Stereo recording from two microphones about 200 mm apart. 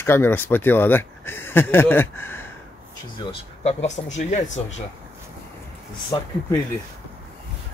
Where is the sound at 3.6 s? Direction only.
35° left (ahead or behind).